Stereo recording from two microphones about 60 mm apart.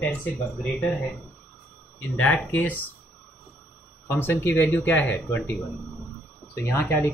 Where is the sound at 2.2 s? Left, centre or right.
Left.